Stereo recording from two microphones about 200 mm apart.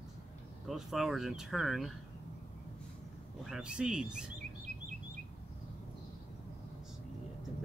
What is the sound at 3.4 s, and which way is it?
Speech, 5° right (ahead or behind).